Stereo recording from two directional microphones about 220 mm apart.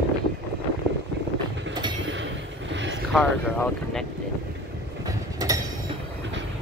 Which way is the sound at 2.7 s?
55° right (ahead or behind).